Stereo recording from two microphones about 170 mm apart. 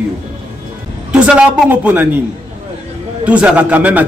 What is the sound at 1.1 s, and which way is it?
Speech, 5° right (ahead or behind).